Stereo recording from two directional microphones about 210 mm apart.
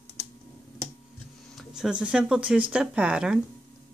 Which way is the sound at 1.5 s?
Centre (ahead or behind).